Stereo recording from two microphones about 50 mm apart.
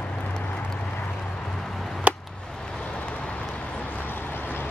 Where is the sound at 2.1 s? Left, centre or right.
Right.